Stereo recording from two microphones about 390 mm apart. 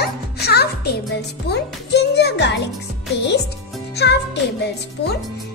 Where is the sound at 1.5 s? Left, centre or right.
Left.